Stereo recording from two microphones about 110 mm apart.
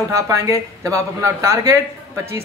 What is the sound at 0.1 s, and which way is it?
Speech, 30° right (ahead or behind).